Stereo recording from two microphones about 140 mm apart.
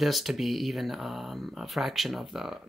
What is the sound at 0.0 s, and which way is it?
Speech, centre (ahead or behind).